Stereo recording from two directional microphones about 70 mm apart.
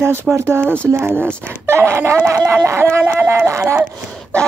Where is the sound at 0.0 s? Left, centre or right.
Right.